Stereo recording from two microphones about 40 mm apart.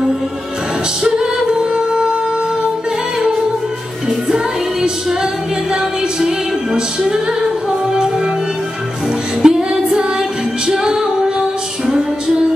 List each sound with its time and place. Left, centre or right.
1.0 s music: centre
4.8 s music: centre
9.4 s music: centre
10.7 s music: centre